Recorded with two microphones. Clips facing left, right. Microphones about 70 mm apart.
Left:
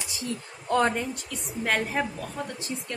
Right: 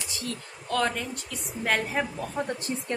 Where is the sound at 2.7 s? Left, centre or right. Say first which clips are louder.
Right 2 dB; right.